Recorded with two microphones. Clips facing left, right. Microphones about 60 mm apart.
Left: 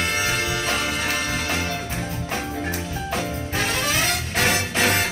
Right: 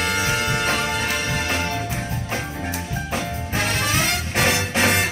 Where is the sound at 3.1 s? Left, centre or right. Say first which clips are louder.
Left 1 dB; right.